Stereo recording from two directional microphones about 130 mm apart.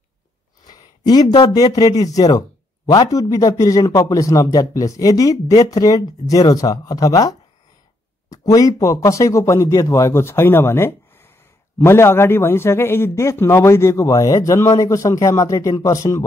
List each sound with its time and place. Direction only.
0.7 s a man's voice: 30° left (ahead or behind)